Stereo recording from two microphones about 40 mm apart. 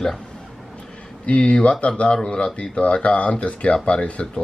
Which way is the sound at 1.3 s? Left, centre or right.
Left.